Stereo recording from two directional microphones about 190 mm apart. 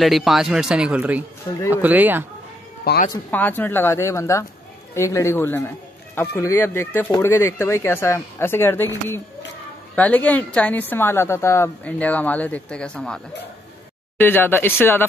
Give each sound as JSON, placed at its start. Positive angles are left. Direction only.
{"t": 0.0, "sound": "speech", "side_deg": 0}
{"t": 2.8, "sound": "speech", "side_deg": 55}
{"t": 3.3, "sound": "speech", "side_deg": 10}